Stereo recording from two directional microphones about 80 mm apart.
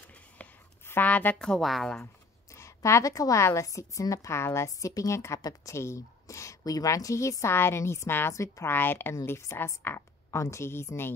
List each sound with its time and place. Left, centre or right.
0.8 s a sound: left
1.4 s speech: centre
2.5 s a woman's voice: left